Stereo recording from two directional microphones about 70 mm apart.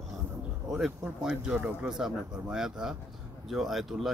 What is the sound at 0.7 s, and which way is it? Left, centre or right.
Speech, centre.